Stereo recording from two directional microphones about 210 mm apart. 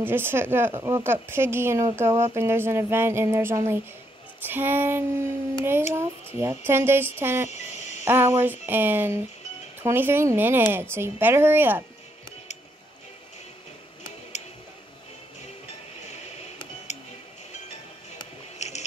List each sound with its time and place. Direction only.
0.0 s speech: 10° right (ahead or behind)
7.5 s music: 30° left (ahead or behind)
8.0 s speech: 10° right (ahead or behind)
18.6 s a sound: 30° left (ahead or behind)